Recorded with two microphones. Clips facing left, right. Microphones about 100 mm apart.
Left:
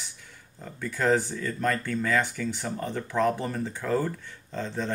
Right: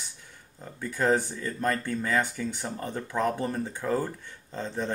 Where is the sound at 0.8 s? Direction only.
20° right (ahead or behind).